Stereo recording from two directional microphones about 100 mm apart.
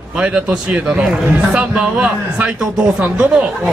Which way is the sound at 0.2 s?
10° right (ahead or behind).